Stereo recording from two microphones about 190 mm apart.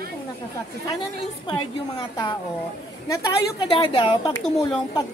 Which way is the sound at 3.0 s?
20° left (ahead or behind).